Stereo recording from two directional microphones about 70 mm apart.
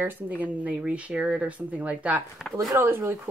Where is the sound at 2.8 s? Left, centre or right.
Right.